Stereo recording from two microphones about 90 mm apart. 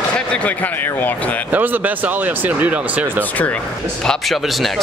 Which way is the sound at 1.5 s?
15° right (ahead or behind).